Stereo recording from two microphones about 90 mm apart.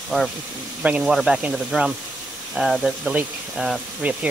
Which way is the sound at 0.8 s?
10° right (ahead or behind).